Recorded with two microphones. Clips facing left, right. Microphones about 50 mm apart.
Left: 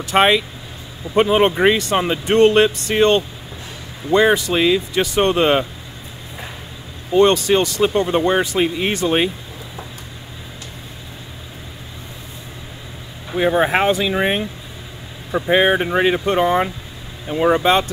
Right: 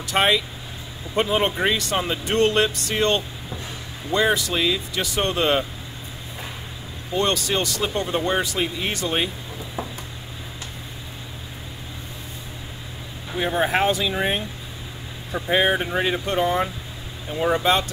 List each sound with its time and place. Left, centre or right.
0.0 s speech: left
7.2 s speech: left
13.6 s speech: left
15.4 s speech: left